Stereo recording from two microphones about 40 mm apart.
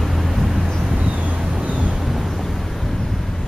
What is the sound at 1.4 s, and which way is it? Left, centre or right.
Vehicle, centre.